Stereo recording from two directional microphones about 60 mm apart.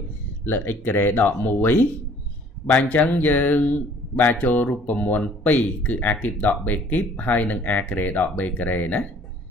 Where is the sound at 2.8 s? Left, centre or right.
Left.